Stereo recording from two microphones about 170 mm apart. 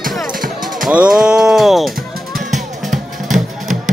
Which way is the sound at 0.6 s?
5° right (ahead or behind).